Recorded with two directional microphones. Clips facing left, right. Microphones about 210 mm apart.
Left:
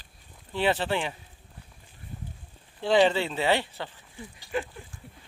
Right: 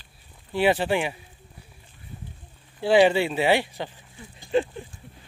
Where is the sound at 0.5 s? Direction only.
10° right (ahead or behind).